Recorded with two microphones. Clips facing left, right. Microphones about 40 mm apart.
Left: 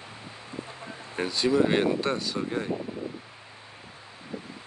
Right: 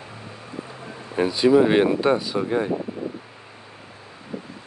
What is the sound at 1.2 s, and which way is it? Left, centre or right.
Speech, centre.